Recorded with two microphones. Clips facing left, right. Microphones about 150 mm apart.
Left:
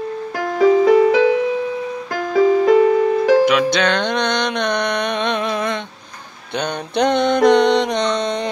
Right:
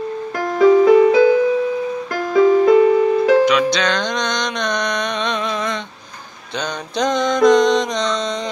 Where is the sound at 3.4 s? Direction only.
60° left (ahead or behind).